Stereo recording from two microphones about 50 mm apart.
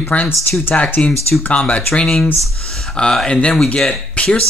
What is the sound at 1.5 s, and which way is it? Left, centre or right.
Speech, left.